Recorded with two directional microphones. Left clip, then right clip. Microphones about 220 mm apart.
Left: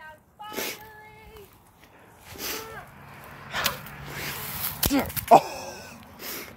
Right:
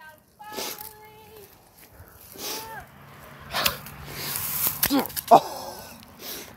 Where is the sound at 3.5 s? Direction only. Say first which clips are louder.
Right 2 dB; 10° right (ahead or behind).